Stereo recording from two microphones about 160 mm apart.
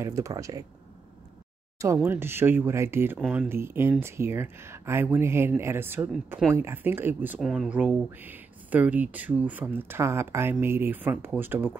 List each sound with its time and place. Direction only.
0.0 s speech: 20° right (ahead or behind)
2.0 s speech: 15° right (ahead or behind)